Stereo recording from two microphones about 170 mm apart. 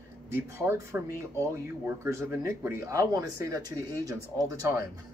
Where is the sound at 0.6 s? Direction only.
15° right (ahead or behind).